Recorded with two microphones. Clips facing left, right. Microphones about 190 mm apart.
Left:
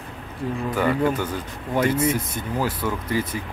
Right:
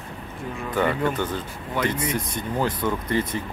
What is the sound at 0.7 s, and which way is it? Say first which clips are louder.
Speech: left 1 dB; 5° left (ahead or behind).